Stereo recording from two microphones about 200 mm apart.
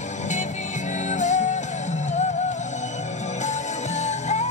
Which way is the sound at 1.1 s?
35° left (ahead or behind).